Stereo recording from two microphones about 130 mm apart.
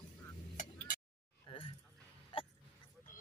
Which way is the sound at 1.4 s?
40° left (ahead or behind).